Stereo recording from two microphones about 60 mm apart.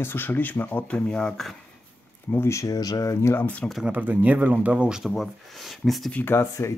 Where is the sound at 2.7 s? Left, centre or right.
Left.